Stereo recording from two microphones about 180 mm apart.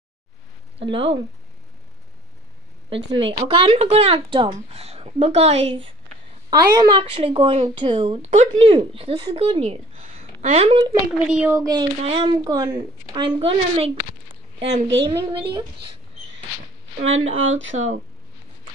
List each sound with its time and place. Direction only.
0.7 s speech: 30° right (ahead or behind)
3.1 s speech: 30° right (ahead or behind)
11.2 s a child's voice: 5° right (ahead or behind)
12.0 s speech: 30° right (ahead or behind)
15.0 s speech: 25° right (ahead or behind)
17.3 s speech: 90° right
17.7 s speech: 40° right (ahead or behind)